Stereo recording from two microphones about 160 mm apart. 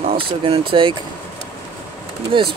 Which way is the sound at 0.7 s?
30° right (ahead or behind).